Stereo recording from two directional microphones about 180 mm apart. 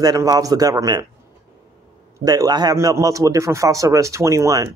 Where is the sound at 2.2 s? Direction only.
20° right (ahead or behind).